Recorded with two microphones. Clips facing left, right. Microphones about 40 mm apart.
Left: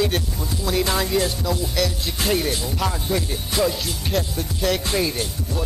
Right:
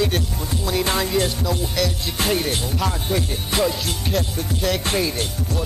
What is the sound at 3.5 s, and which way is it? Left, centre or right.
Music, right.